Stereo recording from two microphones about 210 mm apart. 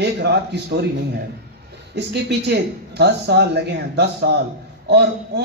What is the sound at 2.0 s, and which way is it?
A man's voice, 55° right (ahead or behind).